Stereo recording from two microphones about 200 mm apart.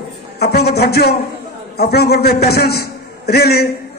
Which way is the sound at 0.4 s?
50° left (ahead or behind).